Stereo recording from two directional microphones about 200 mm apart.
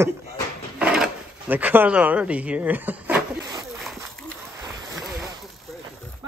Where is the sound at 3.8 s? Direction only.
Centre (ahead or behind).